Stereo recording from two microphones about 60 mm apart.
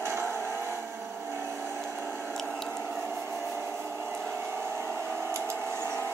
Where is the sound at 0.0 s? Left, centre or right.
Right.